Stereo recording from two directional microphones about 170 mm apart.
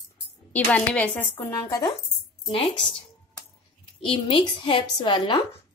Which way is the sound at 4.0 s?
30° left (ahead or behind).